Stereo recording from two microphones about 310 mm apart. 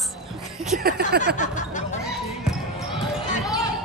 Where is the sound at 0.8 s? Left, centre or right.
Right.